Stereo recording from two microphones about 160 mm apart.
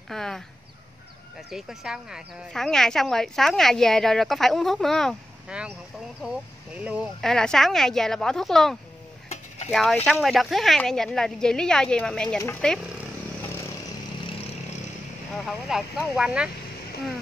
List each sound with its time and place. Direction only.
0.1 s a woman's voice: 5° left (ahead or behind)
1.5 s a woman's voice: centre (ahead or behind)
7.2 s a woman's voice: 5° left (ahead or behind)
12.4 s a woman's voice: 15° left (ahead or behind)
15.3 s a woman's voice: centre (ahead or behind)